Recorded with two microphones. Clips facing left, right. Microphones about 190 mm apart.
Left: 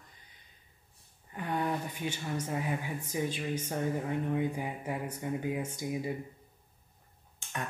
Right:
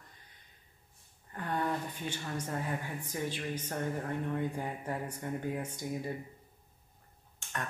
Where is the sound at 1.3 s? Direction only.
10° left (ahead or behind).